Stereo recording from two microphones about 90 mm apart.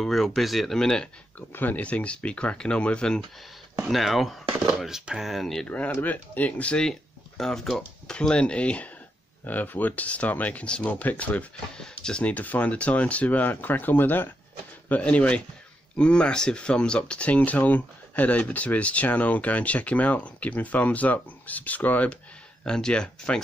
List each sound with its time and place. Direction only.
0.0 s speech: centre (ahead or behind)
1.5 s speech: 20° left (ahead or behind); by 5.7 s centre (ahead or behind)
5.9 s speech: 20° left (ahead or behind)